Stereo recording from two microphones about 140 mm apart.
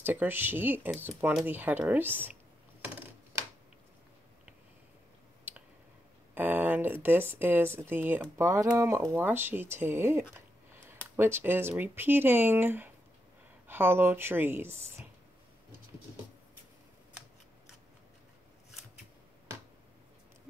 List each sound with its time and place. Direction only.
0.0 s speech: 15° right (ahead or behind)
2.8 s typing: 15° right (ahead or behind)
6.3 s speech: 10° right (ahead or behind)